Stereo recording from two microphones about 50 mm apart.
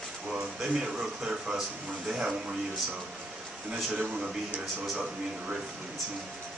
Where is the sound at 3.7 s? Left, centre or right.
Right.